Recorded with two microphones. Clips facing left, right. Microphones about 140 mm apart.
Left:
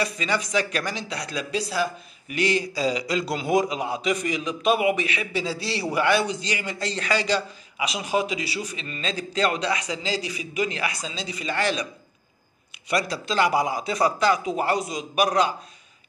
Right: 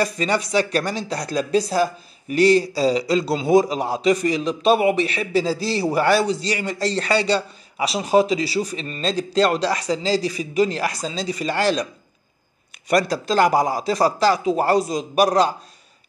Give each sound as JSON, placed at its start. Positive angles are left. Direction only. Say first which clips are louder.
{"t": 0.0, "sound": "speech", "louder": "right 5 dB", "side_deg": -35}
{"t": 12.9, "sound": "speech", "louder": "right 6 dB", "side_deg": -40}